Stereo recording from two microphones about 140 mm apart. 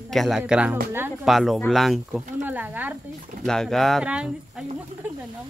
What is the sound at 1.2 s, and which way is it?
Speech, centre (ahead or behind).